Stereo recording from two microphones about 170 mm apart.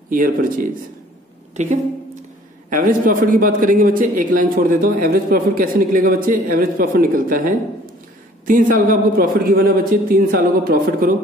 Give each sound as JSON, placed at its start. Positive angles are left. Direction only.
{"t": 0.1, "sound": "a woman's voice", "side_deg": -55}
{"t": 2.7, "sound": "a man's voice", "side_deg": -55}